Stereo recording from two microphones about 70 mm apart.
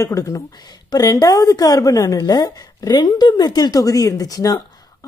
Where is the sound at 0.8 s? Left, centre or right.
Left.